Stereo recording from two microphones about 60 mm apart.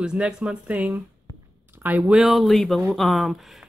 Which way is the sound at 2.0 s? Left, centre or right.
Centre.